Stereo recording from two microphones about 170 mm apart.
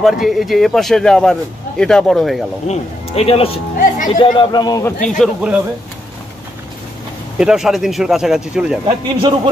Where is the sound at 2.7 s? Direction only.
35° left (ahead or behind).